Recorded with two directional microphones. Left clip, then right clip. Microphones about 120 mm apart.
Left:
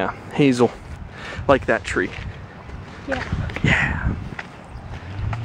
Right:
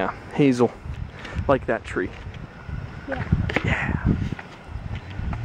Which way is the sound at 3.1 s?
15° left (ahead or behind).